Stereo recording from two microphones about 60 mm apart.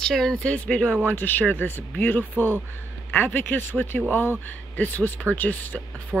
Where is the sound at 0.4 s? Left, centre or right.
Left.